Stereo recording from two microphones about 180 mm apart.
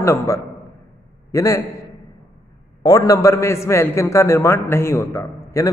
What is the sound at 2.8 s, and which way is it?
A man's voice, 20° left (ahead or behind).